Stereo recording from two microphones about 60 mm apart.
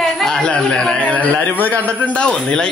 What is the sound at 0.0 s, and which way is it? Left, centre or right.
A man's voice, centre.